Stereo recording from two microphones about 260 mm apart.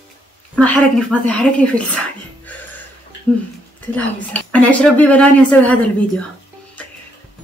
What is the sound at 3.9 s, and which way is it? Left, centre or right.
Speech, centre.